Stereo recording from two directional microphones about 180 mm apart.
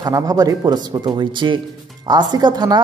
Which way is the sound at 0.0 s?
20° right (ahead or behind).